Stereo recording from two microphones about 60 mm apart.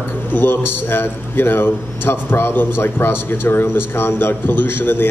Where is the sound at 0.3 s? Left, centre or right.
Left.